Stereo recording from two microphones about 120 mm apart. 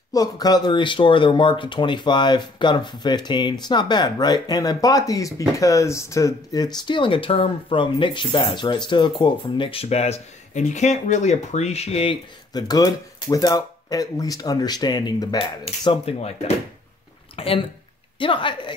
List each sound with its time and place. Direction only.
0.1 s speech: 30° left (ahead or behind); by 12.2 s 55° left (ahead or behind)
12.5 s speech: 30° left (ahead or behind)
15.8 s speech: 45° left (ahead or behind)
16.2 s speech: 60° left (ahead or behind)
17.4 s speech: 50° left (ahead or behind)